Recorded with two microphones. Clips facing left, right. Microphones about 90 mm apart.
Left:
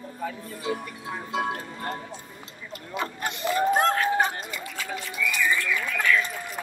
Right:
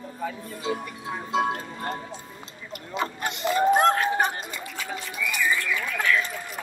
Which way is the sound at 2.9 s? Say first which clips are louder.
Right 2 dB; 20° right (ahead or behind).